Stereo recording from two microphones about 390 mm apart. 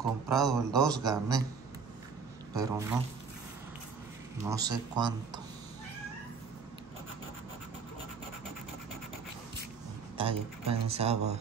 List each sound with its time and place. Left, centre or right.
0.3 s a man's voice: centre
2.5 s speech: centre
4.4 s speech: centre
10.1 s speech: centre